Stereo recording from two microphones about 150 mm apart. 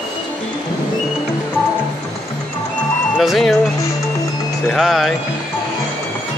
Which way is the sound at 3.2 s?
Centre (ahead or behind).